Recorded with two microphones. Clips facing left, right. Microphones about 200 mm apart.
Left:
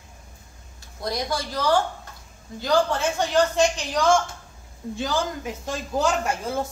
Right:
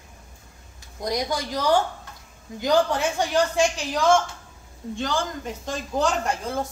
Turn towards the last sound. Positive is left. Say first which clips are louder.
# left 1 dB
turn(degrees=5)  # may be behind; listen again after turning